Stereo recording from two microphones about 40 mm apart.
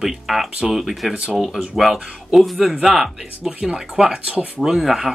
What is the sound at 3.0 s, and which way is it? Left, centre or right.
Speech, centre.